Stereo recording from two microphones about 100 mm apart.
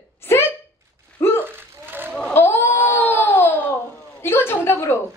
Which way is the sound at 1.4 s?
20° right (ahead or behind).